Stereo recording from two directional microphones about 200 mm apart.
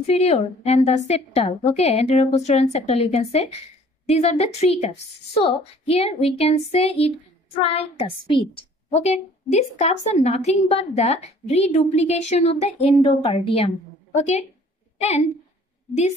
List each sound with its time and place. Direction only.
0.0 s a woman's voice: 30° left (ahead or behind)